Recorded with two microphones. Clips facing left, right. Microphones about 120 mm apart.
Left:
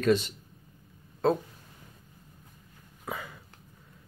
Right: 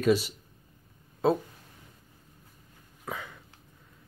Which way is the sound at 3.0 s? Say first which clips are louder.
Left 1 dB; 5° left (ahead or behind).